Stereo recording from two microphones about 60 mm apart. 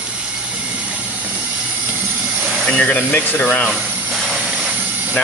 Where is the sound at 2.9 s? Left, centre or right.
Left.